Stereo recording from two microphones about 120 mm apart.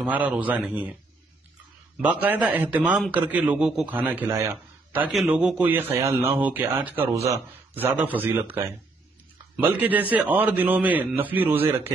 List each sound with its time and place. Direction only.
0.0 s a man's voice: 10° right (ahead or behind)
2.0 s a man's voice: 15° right (ahead or behind)
5.0 s a man's voice: 5° right (ahead or behind)